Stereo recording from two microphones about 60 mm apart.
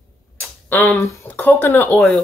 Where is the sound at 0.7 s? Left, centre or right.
Left.